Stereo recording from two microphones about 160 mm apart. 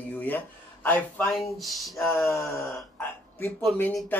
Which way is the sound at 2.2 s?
20° left (ahead or behind).